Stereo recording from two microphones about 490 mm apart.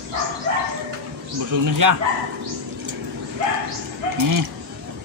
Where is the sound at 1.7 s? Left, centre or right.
Right.